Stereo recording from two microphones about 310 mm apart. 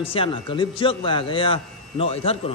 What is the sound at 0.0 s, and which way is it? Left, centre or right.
A man's voice, centre.